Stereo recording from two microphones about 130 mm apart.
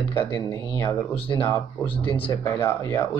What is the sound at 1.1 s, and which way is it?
Speech, 45° left (ahead or behind).